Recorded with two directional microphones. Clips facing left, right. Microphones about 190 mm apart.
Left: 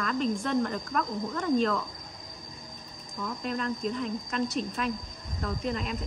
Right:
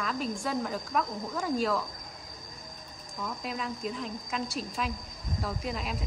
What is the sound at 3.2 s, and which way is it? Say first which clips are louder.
A woman's voice: left 4 dB; 5° right (ahead or behind).